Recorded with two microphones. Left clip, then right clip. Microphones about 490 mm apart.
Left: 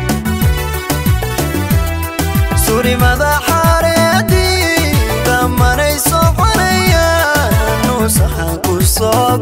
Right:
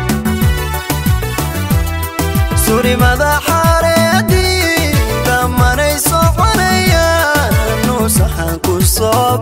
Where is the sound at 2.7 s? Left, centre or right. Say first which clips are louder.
Right 1 dB; right.